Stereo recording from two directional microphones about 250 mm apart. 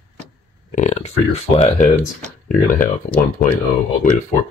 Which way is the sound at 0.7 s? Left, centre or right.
Left.